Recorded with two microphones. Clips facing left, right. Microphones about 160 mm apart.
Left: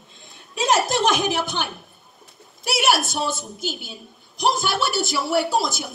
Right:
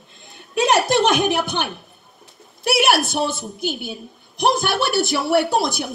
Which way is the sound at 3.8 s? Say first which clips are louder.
Right 8 dB; 60° right (ahead or behind).